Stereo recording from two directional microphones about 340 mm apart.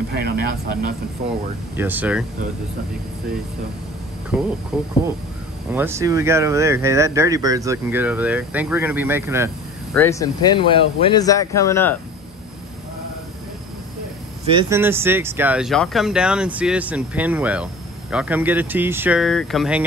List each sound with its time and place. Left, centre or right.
0.1 s speech: right
1.8 s speech: centre
4.3 s speech: centre
9.9 s speech: centre
14.6 s speech: centre